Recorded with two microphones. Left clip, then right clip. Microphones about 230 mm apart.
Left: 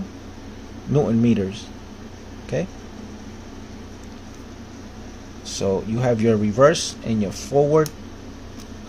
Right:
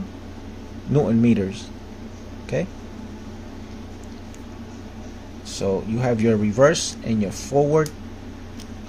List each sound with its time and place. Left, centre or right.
0.9 s speech: centre
5.5 s speech: centre